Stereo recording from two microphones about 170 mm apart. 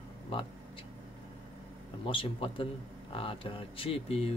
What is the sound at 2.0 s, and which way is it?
Speech, 30° left (ahead or behind).